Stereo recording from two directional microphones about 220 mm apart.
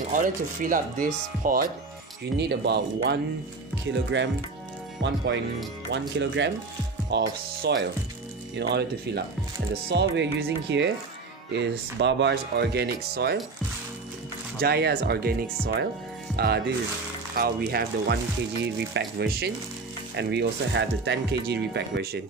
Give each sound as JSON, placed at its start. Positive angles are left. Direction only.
{"t": 0.1, "sound": "speech", "side_deg": -35}
{"t": 14.6, "sound": "speech", "side_deg": -45}